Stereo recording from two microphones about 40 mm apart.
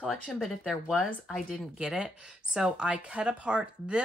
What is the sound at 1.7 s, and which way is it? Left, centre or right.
Speech, right.